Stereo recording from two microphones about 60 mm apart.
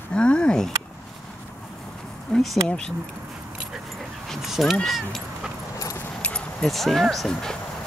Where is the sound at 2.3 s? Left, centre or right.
Centre.